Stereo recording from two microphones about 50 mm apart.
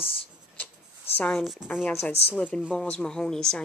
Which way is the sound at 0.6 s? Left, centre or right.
Left.